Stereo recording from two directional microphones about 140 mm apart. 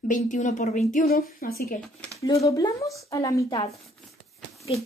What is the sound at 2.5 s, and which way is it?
Speech, 25° left (ahead or behind).